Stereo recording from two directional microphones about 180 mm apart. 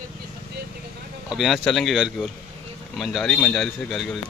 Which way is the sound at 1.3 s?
Centre (ahead or behind).